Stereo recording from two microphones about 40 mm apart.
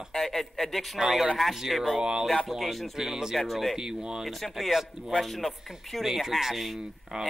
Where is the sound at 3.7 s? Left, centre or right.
Centre.